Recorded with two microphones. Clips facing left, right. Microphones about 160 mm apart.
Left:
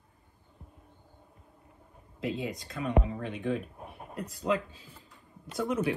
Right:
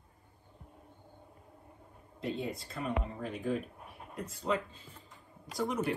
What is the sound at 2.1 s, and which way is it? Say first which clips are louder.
Speech: left 3 dB; centre (ahead or behind).